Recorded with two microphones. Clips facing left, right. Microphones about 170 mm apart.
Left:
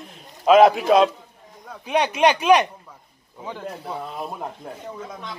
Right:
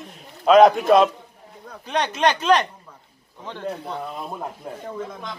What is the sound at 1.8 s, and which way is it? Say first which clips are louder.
Speech: left 3 dB; 10° left (ahead or behind).